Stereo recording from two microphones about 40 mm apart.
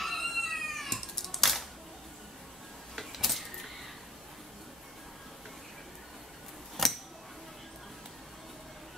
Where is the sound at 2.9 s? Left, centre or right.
Centre.